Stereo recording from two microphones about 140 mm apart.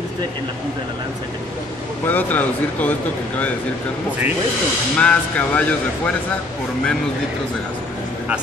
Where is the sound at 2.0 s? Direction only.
10° left (ahead or behind).